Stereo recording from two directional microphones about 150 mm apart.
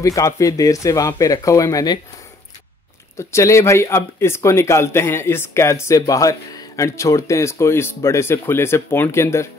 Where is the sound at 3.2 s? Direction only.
20° left (ahead or behind).